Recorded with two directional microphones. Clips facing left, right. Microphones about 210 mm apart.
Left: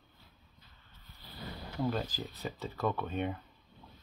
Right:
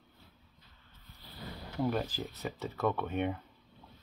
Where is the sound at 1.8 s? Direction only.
10° right (ahead or behind).